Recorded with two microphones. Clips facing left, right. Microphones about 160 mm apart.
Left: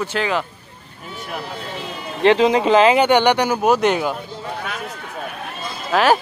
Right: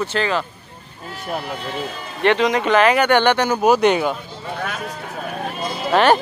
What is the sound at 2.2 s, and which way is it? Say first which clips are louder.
Speech: left 3 dB; 30° left (ahead or behind).